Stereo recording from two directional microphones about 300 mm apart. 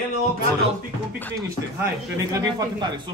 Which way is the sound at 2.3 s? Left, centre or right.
Centre.